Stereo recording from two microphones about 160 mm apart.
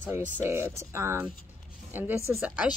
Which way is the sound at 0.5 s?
15° right (ahead or behind).